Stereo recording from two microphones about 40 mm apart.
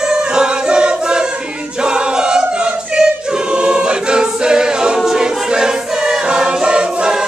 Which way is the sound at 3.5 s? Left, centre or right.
Right.